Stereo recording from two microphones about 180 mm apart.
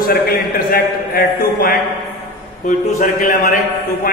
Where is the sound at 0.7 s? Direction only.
55° left (ahead or behind).